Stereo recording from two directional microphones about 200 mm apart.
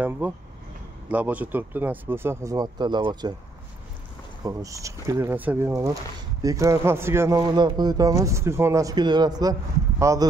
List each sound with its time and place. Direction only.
0.2 s speech: 10° right (ahead or behind)
4.5 s speech: 15° right (ahead or behind)